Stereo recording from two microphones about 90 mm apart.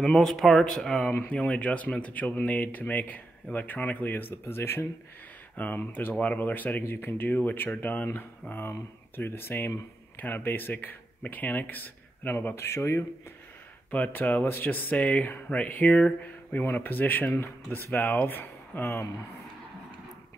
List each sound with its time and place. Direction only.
0.0 s speech: 10° left (ahead or behind); by 13.0 s 30° left (ahead or behind)
13.8 s speech: 20° left (ahead or behind)